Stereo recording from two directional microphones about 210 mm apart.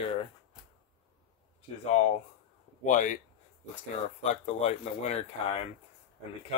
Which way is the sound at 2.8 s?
35° left (ahead or behind).